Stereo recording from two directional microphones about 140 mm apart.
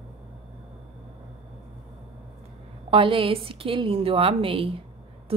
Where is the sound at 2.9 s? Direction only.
40° right (ahead or behind).